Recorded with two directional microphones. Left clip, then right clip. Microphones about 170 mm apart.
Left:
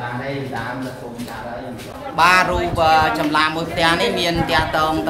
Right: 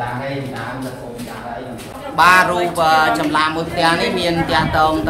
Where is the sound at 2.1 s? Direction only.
25° left (ahead or behind).